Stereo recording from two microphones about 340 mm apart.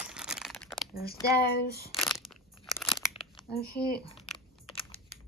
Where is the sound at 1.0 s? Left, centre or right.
Left.